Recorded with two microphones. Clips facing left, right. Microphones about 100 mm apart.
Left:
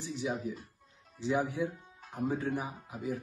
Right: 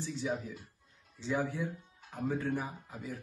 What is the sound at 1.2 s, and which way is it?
Speech, 15° left (ahead or behind).